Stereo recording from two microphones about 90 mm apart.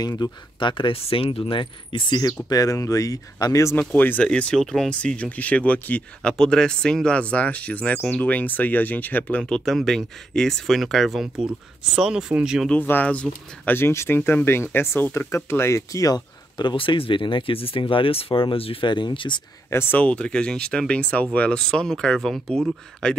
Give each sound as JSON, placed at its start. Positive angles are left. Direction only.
{"t": 0.0, "sound": "speech", "side_deg": 50}
{"t": 2.5, "sound": "speech", "side_deg": 40}
{"t": 3.9, "sound": "speech", "side_deg": 20}
{"t": 9.4, "sound": "speech", "side_deg": 5}
{"t": 12.8, "sound": "speech", "side_deg": 20}
{"t": 13.7, "sound": "speech", "side_deg": 25}
{"t": 16.5, "sound": "speech", "side_deg": 65}
{"t": 19.7, "sound": "speech", "side_deg": 25}
{"t": 20.0, "sound": "speech", "side_deg": 10}